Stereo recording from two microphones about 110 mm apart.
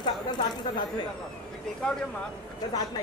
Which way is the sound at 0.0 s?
40° left (ahead or behind).